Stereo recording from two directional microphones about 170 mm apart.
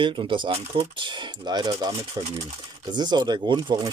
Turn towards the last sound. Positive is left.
turn(degrees=-25)  # may be behind; listen again after turning